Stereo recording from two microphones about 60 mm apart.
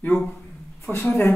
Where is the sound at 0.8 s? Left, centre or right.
Left.